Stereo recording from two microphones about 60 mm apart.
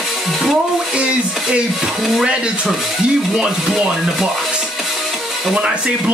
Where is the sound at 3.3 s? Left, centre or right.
Centre.